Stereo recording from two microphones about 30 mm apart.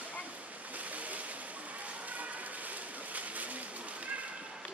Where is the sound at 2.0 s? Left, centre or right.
Right.